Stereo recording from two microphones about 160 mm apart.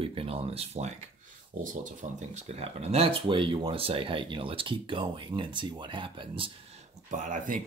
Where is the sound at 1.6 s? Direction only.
55° right (ahead or behind); by 6.5 s 30° right (ahead or behind).